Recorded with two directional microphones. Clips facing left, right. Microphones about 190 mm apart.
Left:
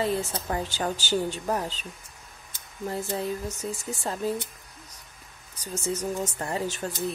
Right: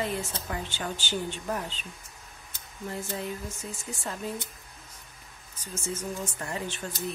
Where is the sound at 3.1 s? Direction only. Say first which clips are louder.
Left 5 dB; 35° left (ahead or behind).